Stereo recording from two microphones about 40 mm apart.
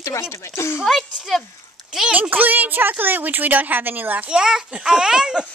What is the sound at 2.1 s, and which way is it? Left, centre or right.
A woman's voice, right.